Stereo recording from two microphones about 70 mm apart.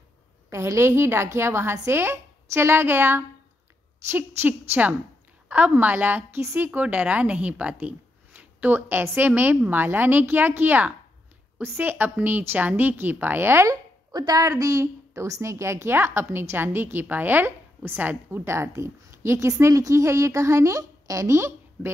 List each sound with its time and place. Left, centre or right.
0.5 s a woman's voice: right
5.8 s a woman's voice: right
13.7 s a woman's voice: right
19.6 s a woman's voice: right